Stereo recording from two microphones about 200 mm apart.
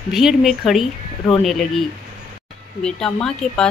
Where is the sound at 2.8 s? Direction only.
5° left (ahead or behind).